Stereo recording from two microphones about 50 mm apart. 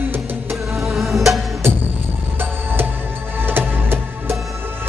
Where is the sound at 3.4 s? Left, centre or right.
Right.